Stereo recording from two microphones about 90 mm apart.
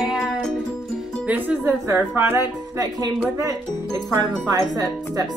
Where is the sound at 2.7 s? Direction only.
45° right (ahead or behind).